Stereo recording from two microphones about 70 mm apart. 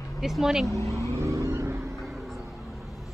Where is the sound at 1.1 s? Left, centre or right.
Right.